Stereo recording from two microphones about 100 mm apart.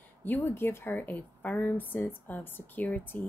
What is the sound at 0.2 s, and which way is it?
A woman's voice, 20° left (ahead or behind).